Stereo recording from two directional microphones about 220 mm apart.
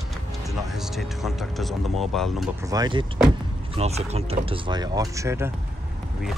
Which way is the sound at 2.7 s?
20° right (ahead or behind).